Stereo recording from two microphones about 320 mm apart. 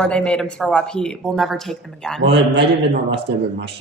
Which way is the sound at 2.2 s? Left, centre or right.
Right.